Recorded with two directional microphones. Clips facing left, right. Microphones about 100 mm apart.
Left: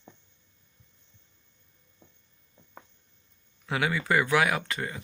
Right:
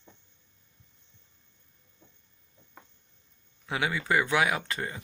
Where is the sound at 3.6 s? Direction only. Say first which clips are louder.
Left 2 dB; 20° right (ahead or behind).